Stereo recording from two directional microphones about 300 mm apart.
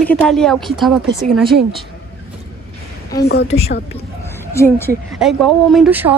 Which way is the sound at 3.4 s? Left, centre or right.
Left.